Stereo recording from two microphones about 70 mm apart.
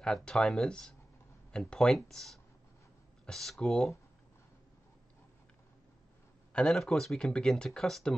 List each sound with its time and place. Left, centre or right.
0.0 s speech: centre
6.5 s speech: centre